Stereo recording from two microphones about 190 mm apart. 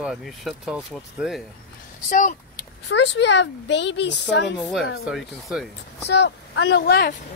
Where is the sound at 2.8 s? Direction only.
70° left (ahead or behind).